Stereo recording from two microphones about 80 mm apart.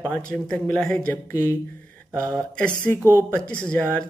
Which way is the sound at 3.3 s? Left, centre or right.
Centre.